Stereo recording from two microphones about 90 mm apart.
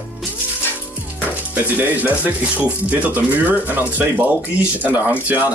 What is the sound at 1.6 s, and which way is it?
Speech, 20° right (ahead or behind).